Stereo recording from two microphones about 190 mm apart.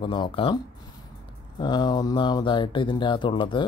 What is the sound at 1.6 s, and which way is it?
Speech, 20° left (ahead or behind).